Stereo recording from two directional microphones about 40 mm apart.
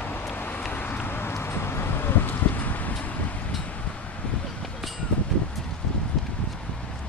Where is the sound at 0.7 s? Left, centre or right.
Left.